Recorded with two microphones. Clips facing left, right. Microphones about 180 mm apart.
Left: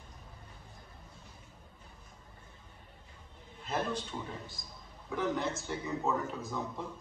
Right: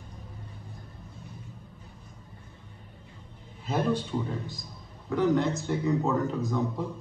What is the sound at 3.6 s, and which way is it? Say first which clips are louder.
A man's voice: right 7 dB; 5° right (ahead or behind).